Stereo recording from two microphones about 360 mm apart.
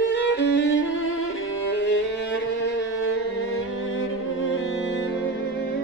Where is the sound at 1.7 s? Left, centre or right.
Left.